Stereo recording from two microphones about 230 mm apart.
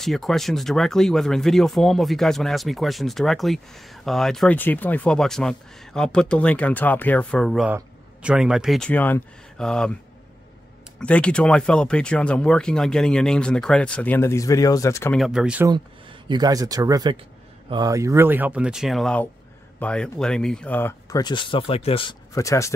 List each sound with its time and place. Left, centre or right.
0.0 s speech: centre
11.0 s speech: centre
15.1 s speech: centre
15.7 s speech: centre